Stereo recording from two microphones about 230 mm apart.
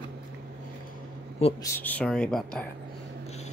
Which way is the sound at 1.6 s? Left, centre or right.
Centre.